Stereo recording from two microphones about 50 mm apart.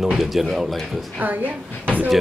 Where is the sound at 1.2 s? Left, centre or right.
Right.